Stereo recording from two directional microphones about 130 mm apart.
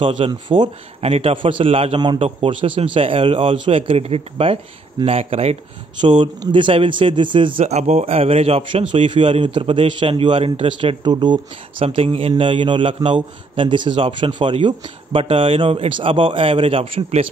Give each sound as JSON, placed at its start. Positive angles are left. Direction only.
{"t": 0.0, "sound": "a man's voice", "side_deg": -40}
{"t": 5.9, "sound": "a man's voice", "side_deg": -35}
{"t": 7.6, "sound": "a man's voice", "side_deg": -55}
{"t": 11.8, "sound": "a man's voice", "side_deg": -45}